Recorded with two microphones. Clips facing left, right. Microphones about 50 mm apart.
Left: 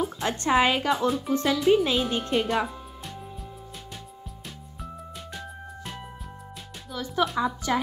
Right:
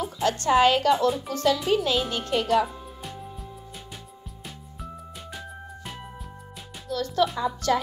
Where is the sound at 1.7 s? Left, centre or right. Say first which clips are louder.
Left 2 dB; centre.